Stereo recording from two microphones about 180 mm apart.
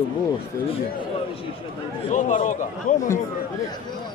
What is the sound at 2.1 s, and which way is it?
Speech, 40° left (ahead or behind).